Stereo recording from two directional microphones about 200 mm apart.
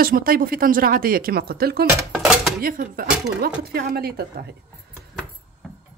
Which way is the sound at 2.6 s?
45° right (ahead or behind).